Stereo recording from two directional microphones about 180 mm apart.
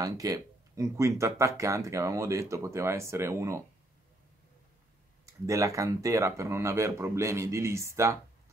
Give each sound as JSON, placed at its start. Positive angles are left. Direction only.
{"t": 0.0, "sound": "speech", "side_deg": -20}
{"t": 5.2, "sound": "speech", "side_deg": -15}